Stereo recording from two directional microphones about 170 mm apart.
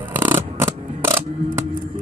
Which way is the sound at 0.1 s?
15° right (ahead or behind).